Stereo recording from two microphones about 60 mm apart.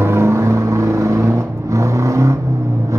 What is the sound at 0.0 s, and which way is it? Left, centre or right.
Vehicle, right.